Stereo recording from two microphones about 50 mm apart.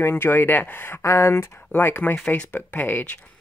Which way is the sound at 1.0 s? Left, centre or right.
Left.